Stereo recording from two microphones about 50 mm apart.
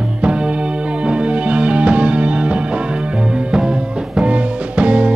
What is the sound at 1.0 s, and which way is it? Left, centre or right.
Music, right.